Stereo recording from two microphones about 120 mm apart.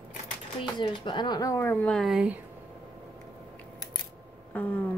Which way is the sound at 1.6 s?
15° left (ahead or behind).